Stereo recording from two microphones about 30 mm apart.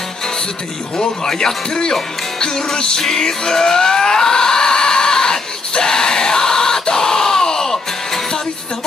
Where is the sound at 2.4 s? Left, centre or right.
Centre.